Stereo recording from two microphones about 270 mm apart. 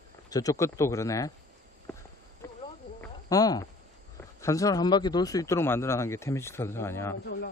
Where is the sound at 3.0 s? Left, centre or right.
Centre.